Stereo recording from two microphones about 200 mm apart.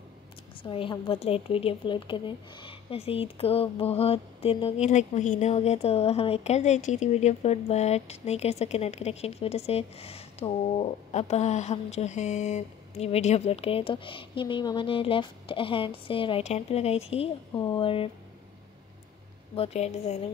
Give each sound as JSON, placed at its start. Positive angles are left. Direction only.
{"t": 0.6, "sound": "a woman's voice", "side_deg": 25}
{"t": 19.5, "sound": "a woman's voice", "side_deg": 30}